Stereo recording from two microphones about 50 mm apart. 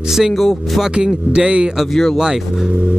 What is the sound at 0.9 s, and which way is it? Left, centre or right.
Speech, centre.